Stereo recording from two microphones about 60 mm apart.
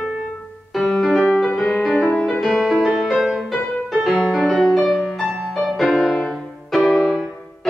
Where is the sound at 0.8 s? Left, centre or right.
Centre.